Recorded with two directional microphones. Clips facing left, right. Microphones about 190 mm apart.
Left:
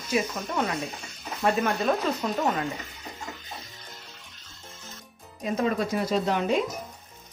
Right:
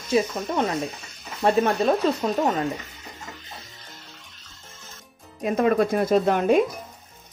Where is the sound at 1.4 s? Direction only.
30° right (ahead or behind).